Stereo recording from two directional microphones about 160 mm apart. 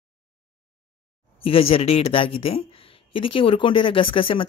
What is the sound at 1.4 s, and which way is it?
Speech, 35° left (ahead or behind).